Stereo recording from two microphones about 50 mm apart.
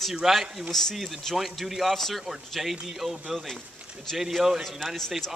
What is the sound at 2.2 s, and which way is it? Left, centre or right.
Speech, centre.